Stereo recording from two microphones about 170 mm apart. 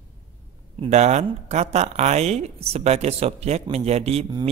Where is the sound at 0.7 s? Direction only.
40° right (ahead or behind).